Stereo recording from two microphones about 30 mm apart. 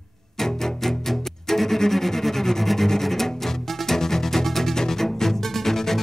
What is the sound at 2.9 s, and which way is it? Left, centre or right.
Music, centre.